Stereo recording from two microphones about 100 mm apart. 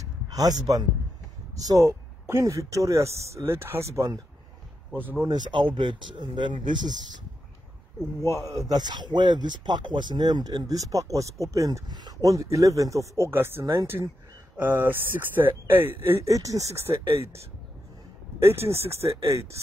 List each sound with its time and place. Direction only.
0.0 s a sound: 35° right (ahead or behind)
1.6 s speech: 35° right (ahead or behind)
5.3 s speech: 55° right (ahead or behind)
8.2 s a man's voice: 30° right (ahead or behind)
18.4 s speech: 25° right (ahead or behind)